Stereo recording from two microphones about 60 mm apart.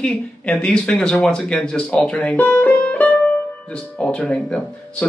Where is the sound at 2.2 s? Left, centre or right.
Left.